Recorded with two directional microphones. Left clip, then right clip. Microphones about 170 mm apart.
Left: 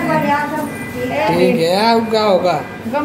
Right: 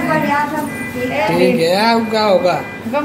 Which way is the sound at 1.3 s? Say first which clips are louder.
Right 1 dB; 5° left (ahead or behind).